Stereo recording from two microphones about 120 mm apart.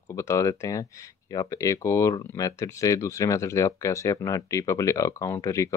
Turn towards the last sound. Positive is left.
turn(degrees=25)  # may be behind; listen again after turning